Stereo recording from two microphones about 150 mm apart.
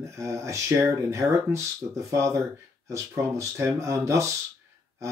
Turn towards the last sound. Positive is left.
turn(degrees=-20)  # may be behind; listen again after turning